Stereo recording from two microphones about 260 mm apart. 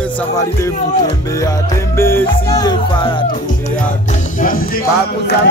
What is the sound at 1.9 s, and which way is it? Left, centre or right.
Music, centre.